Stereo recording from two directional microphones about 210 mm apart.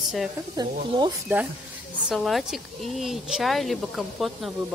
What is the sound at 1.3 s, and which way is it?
Speech, 10° right (ahead or behind).